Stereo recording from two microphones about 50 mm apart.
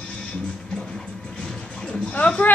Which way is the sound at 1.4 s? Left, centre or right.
Centre.